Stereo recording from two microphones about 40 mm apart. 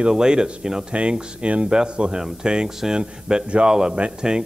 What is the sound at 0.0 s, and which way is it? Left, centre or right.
Speech, centre.